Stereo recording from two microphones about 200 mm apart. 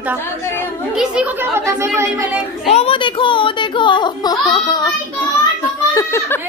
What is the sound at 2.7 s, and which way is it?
Speech, 30° left (ahead or behind).